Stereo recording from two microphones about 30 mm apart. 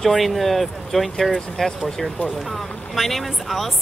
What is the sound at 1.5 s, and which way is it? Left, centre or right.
Speech, centre.